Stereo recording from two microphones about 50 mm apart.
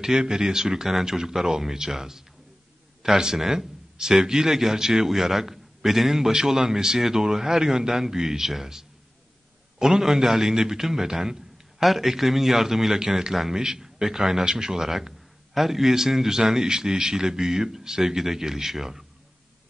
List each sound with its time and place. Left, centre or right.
0.0 s a man's voice: centre